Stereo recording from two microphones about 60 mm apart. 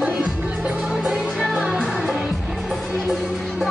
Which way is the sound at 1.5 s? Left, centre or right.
Centre.